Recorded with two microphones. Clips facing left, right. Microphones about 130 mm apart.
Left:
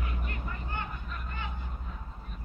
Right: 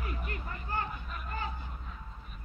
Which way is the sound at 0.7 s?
35° right (ahead or behind).